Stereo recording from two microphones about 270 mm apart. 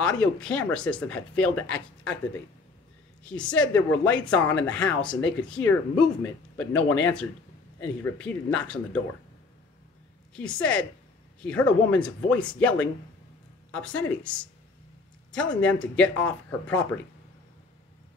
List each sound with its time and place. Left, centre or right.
0.0 s speech: centre
3.3 s speech: centre
6.9 s speech: left
7.8 s speech: centre
10.3 s speech: centre
15.3 s speech: centre